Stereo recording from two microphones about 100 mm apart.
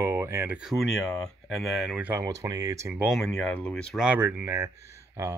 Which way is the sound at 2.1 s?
35° right (ahead or behind).